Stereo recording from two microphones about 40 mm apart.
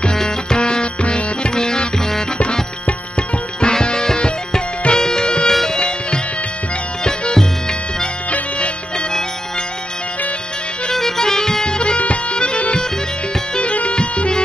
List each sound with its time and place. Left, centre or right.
0.1 s music: centre
10.9 s music: centre
11.8 s bagpipes: left
13.6 s music: left